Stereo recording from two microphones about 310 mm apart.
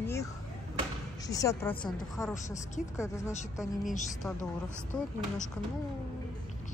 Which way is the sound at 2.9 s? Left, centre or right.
Centre.